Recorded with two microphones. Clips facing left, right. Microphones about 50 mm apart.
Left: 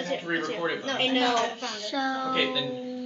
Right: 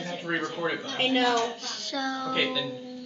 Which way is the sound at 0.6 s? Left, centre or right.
Centre.